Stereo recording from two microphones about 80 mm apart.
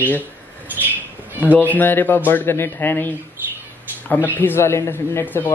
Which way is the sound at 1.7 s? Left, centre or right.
Left.